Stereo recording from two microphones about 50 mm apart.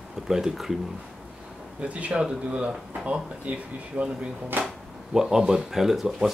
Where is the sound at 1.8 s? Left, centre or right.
Right.